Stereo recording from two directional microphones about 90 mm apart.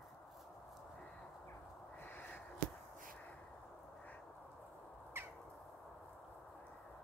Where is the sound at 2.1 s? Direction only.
20° left (ahead or behind).